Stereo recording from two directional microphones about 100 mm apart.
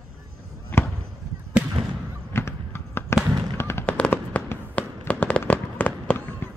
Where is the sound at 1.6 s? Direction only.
10° right (ahead or behind).